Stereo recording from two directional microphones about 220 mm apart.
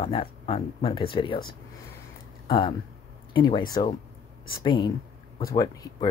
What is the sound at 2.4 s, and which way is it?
Speech, 20° left (ahead or behind).